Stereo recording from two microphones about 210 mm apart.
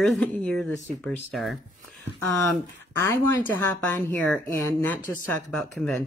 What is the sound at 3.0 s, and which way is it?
Speech, 15° left (ahead or behind).